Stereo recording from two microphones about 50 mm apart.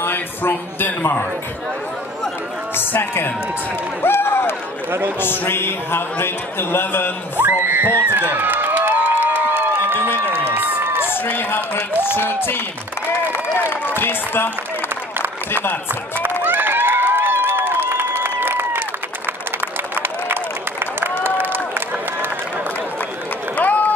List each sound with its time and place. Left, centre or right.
0.0 s speech: left
2.7 s speech: left
7.3 s speech: right
8.1 s crowd: right
10.3 s run: right
11.1 s speech: left
13.3 s a sound: left
13.8 s speech: left
15.5 s speech: left
15.9 s a sound: right
21.2 s run: right
23.5 s run: left